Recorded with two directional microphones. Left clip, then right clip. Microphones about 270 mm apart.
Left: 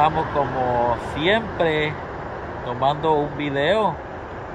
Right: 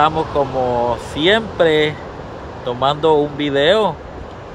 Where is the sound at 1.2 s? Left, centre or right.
Centre.